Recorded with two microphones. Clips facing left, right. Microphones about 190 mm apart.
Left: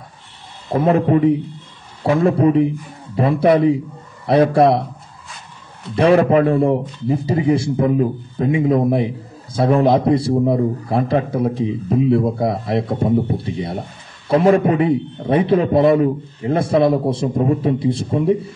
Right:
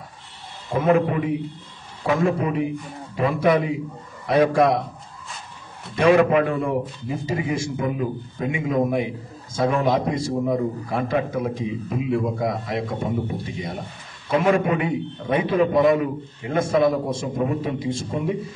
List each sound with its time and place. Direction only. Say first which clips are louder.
0.7 s a man's voice: left 4 dB; 35° left (ahead or behind)
5.9 s a man's voice: left 3 dB; 35° left (ahead or behind)